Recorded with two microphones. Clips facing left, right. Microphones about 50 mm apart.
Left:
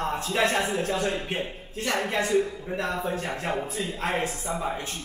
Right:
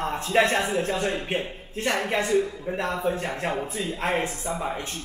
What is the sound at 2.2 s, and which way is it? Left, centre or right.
Speech, centre.